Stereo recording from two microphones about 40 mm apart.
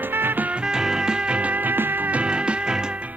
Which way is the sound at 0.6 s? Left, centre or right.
Centre.